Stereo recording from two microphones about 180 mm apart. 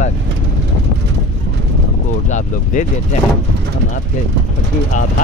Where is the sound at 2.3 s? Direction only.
40° left (ahead or behind).